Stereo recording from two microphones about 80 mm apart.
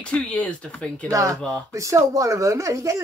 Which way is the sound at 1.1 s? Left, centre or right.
Right.